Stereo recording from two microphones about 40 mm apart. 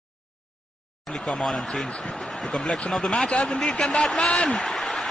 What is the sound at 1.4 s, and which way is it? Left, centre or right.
A man's voice, centre.